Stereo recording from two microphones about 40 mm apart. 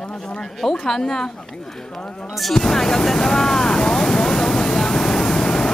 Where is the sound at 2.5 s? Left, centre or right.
Centre.